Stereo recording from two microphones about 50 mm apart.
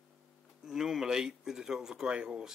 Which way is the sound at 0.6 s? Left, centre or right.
Centre.